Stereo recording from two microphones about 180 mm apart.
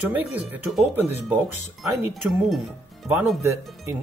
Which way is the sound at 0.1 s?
10° right (ahead or behind).